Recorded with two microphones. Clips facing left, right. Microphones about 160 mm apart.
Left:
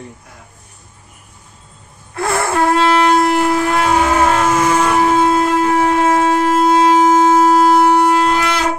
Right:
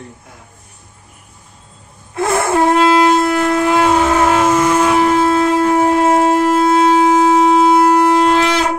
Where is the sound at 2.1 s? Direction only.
20° right (ahead or behind).